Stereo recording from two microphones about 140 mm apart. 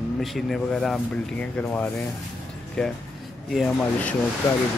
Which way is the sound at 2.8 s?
5° left (ahead or behind).